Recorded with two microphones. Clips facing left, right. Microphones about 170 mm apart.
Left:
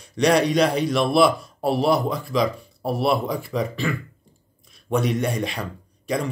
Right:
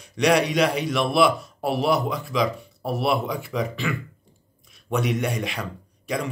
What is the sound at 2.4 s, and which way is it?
Speech, centre (ahead or behind).